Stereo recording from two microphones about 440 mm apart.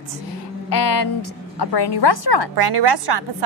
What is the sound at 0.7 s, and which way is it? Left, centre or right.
A woman's voice, left.